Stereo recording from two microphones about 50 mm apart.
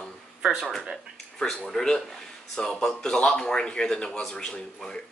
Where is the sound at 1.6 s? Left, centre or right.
Centre.